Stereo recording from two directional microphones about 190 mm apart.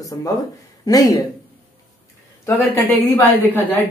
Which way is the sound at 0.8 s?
20° left (ahead or behind).